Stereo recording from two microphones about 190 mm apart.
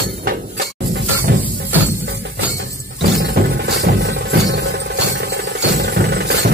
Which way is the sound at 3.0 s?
60° right (ahead or behind).